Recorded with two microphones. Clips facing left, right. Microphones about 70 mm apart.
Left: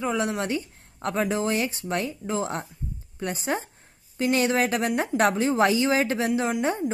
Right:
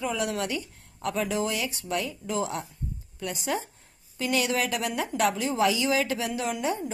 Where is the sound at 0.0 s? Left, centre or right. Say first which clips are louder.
Left 3 dB; left.